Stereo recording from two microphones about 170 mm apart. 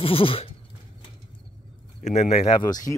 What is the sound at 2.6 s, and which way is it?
Speech, 20° left (ahead or behind).